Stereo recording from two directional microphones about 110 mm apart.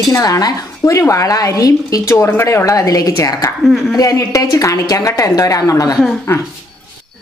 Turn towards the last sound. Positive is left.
turn(degrees=25)  # may be behind; listen again after turning